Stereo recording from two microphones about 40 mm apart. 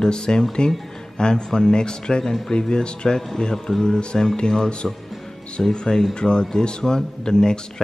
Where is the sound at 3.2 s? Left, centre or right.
Centre.